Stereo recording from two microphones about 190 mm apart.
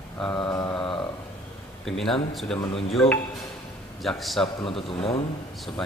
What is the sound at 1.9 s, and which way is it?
Speech, centre (ahead or behind).